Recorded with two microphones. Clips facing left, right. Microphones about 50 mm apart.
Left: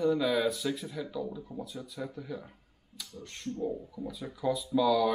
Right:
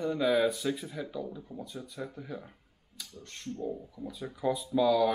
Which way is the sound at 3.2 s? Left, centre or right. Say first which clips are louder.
Left 2 dB; centre.